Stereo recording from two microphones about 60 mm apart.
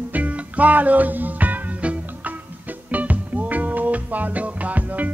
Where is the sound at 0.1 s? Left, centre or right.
Right.